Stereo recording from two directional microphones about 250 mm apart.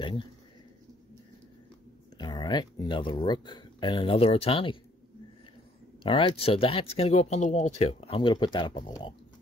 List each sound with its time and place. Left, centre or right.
2.1 s speech: centre
6.0 s speech: left